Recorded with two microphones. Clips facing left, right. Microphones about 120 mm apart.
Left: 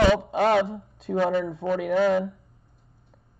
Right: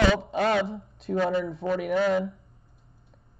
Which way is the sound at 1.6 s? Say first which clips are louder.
Left 1 dB; 55° left (ahead or behind).